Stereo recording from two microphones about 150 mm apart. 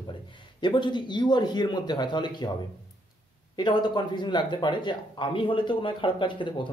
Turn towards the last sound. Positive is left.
turn(degrees=30)  # may be behind; listen again after turning